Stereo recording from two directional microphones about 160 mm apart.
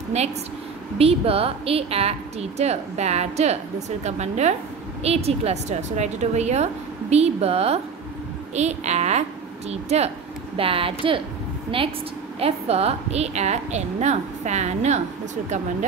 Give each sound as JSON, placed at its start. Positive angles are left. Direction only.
{"t": 0.1, "sound": "a woman's voice", "side_deg": -45}
{"t": 12.4, "sound": "a woman's voice", "side_deg": -40}